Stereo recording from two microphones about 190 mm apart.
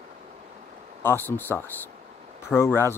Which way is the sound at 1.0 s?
10° left (ahead or behind).